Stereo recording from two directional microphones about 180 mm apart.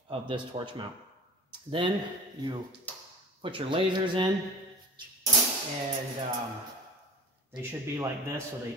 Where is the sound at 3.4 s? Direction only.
30° right (ahead or behind).